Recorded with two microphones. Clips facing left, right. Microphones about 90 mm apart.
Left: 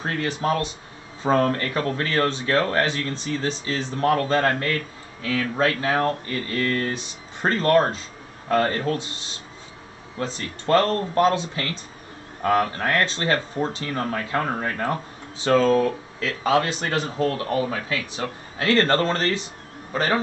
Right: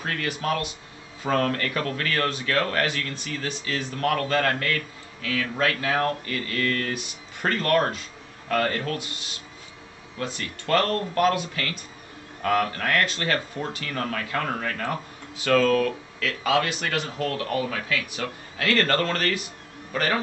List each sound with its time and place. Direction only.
0.0 s speech: 30° left (ahead or behind)